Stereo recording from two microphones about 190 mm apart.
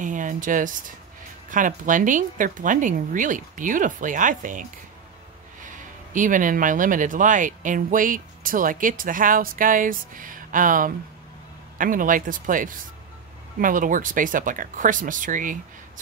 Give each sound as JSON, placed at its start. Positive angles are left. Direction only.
{"t": 0.0, "sound": "speech", "side_deg": -45}
{"t": 6.1, "sound": "speech", "side_deg": -45}